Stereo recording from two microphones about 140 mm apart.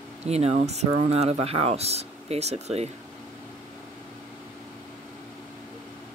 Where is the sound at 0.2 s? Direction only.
50° right (ahead or behind).